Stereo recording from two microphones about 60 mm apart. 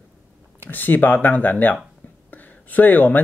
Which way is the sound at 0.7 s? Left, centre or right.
Left.